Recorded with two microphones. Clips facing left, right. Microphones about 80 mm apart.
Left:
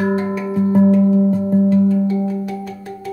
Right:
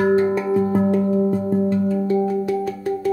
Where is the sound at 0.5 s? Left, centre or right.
Centre.